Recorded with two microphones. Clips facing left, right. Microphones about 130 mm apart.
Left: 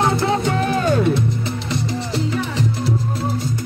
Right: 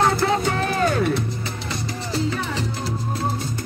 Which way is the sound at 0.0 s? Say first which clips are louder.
Left 1 dB; 25° left (ahead or behind).